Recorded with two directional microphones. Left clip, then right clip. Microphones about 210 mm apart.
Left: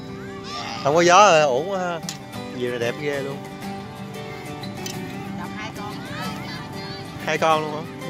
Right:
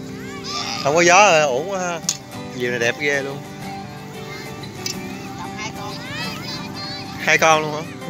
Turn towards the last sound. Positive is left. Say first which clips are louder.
# right 5 dB
turn(degrees=0)  # may be behind; listen again after turning